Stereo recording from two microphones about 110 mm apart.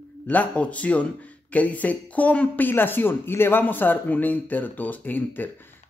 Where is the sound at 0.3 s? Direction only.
15° left (ahead or behind).